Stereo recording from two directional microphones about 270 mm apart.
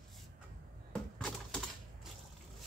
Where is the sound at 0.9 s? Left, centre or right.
Centre.